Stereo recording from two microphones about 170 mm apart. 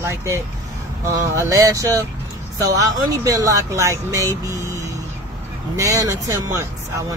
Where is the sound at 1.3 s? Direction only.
15° right (ahead or behind).